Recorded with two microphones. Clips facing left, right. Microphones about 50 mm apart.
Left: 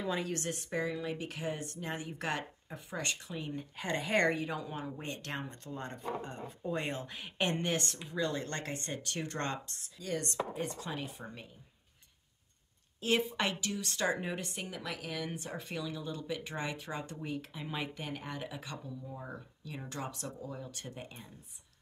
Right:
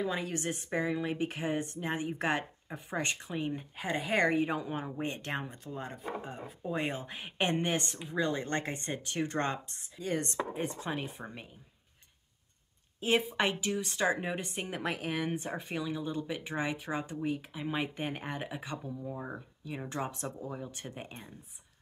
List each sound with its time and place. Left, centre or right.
0.0 s a woman's voice: centre
0.3 s a woman's voice: centre
3.7 s speech: centre
4.4 s speech: right; by 7.0 s centre
7.0 s a woman's voice: centre
13.0 s a woman's voice: right
14.8 s a woman's voice: right; by 17.8 s centre
17.9 s a woman's voice: right